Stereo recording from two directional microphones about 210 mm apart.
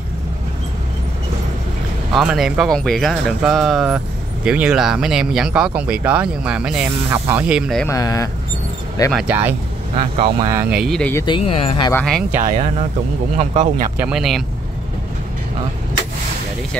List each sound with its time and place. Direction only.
2.1 s speech: centre (ahead or behind)
7.8 s speech: 15° left (ahead or behind)
9.1 s speech: 10° right (ahead or behind)
10.1 s speech: 25° right (ahead or behind)
10.5 s speech: 5° right (ahead or behind)
11.2 s speech: 25° left (ahead or behind)
11.9 s speech: 5° left (ahead or behind)
12.4 s speech: 35° right (ahead or behind)
13.9 s speech: 5° right (ahead or behind)